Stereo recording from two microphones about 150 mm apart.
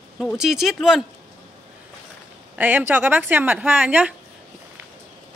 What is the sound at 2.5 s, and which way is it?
Speech, 10° right (ahead or behind).